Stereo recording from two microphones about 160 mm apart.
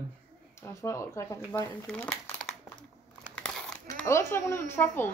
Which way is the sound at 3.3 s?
5° left (ahead or behind).